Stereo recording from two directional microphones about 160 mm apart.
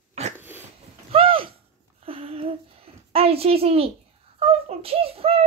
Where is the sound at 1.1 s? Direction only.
35° right (ahead or behind).